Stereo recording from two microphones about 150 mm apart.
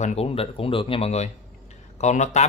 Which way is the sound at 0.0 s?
45° left (ahead or behind).